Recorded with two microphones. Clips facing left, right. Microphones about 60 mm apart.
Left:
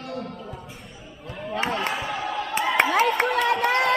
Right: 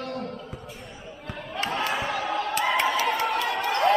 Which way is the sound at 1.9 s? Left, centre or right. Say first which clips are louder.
Right 1 dB; centre.